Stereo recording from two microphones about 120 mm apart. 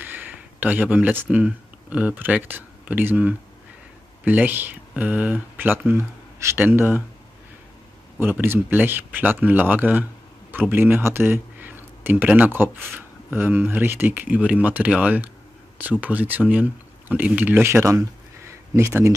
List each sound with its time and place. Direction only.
0.0 s speech: 15° right (ahead or behind)
8.2 s speech: 20° right (ahead or behind)